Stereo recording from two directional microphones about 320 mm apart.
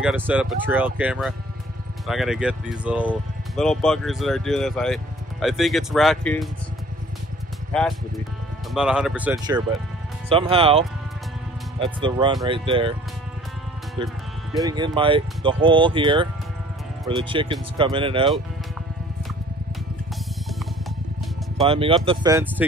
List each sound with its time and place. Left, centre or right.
0.0 s speech: centre
7.7 s speech: centre
14.6 s speech: centre
21.5 s speech: centre